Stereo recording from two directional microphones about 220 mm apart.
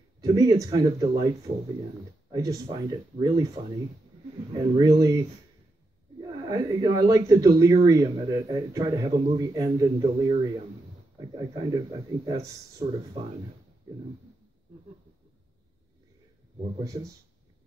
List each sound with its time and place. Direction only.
0.2 s speech: 15° right (ahead or behind)
2.3 s speech: 15° right (ahead or behind)
4.6 s speech: 15° right (ahead or behind)
6.2 s speech: 20° right (ahead or behind)